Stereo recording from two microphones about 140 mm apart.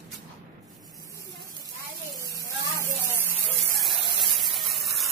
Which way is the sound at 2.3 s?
20° left (ahead or behind).